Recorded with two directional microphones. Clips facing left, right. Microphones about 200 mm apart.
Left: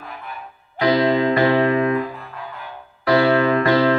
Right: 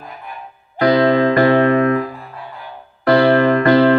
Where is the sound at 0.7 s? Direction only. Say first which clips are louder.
Right 4 dB; 55° right (ahead or behind).